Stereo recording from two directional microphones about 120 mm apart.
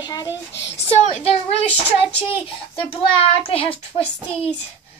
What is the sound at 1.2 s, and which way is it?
A child's voice, 55° left (ahead or behind).